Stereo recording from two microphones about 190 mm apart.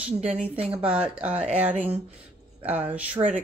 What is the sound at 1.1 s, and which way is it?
Speech, 5° right (ahead or behind).